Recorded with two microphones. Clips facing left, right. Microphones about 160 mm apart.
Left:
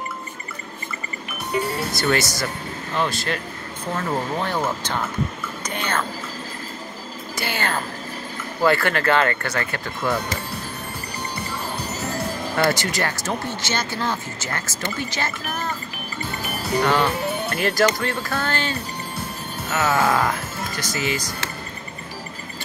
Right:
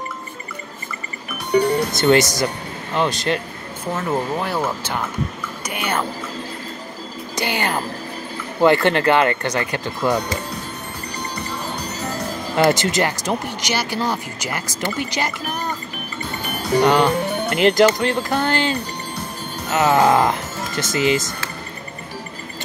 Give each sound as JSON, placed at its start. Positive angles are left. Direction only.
{"t": 2.0, "sound": "speech", "side_deg": -20}
{"t": 3.9, "sound": "speech", "side_deg": -10}
{"t": 5.7, "sound": "speech", "side_deg": -10}
{"t": 7.3, "sound": "speech", "side_deg": -15}
{"t": 12.5, "sound": "speech", "side_deg": -20}
{"t": 16.8, "sound": "speech", "side_deg": -20}